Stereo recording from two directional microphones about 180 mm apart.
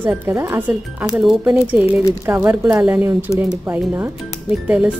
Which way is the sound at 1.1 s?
Centre (ahead or behind).